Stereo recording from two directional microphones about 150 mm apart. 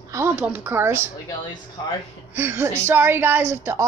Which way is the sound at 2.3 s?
15° right (ahead or behind).